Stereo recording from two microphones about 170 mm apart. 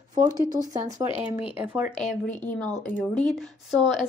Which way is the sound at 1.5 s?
10° right (ahead or behind).